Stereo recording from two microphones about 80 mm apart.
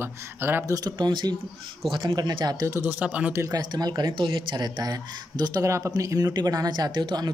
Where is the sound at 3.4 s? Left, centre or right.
Right.